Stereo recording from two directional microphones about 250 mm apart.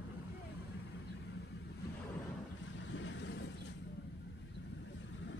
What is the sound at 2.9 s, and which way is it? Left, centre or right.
Vehicle, left.